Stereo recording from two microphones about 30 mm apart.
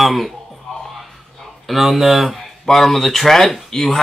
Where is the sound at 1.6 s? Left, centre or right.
Centre.